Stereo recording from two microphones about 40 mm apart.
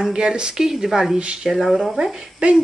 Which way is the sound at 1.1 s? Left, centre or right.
Right.